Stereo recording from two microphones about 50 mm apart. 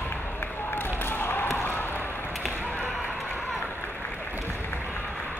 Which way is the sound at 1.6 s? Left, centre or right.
Left.